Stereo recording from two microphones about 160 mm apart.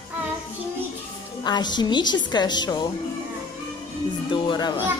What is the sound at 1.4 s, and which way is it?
A woman's voice, 25° left (ahead or behind).